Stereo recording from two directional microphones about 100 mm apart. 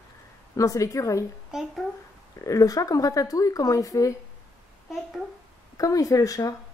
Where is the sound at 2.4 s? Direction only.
35° left (ahead or behind).